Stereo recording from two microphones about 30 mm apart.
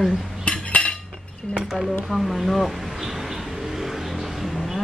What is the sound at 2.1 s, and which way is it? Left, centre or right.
Vehicle, centre.